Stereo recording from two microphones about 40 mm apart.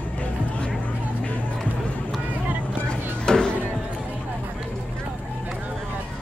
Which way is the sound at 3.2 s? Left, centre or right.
Centre.